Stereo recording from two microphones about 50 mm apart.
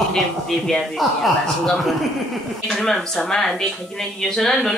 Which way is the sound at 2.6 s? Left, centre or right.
Centre.